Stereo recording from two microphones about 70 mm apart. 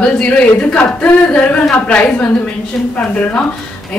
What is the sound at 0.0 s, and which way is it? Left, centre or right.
Speech, centre.